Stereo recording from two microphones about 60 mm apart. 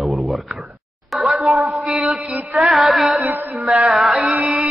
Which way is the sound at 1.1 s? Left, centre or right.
Centre.